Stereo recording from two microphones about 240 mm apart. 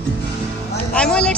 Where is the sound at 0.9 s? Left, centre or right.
Centre.